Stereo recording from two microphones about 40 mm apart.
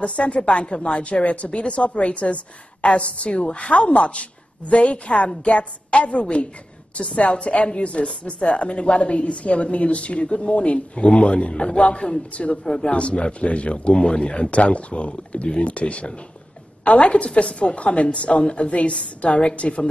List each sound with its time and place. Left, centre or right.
0.0 s a woman's voice: left